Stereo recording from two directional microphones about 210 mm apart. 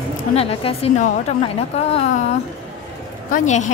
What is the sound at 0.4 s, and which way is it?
Speech, 30° left (ahead or behind).